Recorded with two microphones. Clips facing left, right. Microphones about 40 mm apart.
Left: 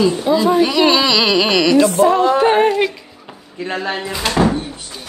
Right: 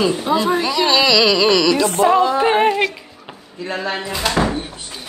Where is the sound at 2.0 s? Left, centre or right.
Right.